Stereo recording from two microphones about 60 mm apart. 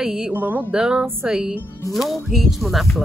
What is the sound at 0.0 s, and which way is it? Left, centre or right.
Speech, centre.